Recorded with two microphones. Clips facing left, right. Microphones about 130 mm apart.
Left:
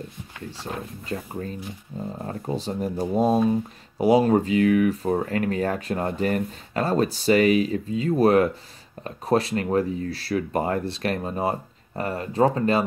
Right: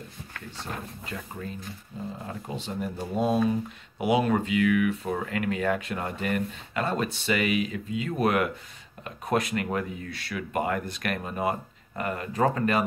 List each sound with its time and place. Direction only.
1.0 s speech: 35° left (ahead or behind)